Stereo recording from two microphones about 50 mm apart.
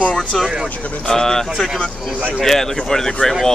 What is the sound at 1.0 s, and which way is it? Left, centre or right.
Speech, centre.